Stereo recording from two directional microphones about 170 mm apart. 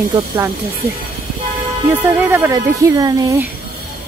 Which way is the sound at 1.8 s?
15° right (ahead or behind).